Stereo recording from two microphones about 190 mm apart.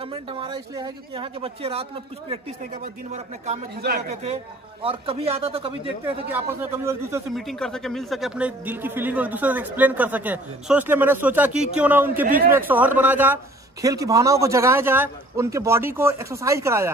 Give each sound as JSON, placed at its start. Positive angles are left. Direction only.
{"t": 0.0, "sound": "speech", "side_deg": -30}
{"t": 3.7, "sound": "speech", "side_deg": -60}
{"t": 4.1, "sound": "speech", "side_deg": -35}
{"t": 6.2, "sound": "speech", "side_deg": -10}
{"t": 7.3, "sound": "speech", "side_deg": 0}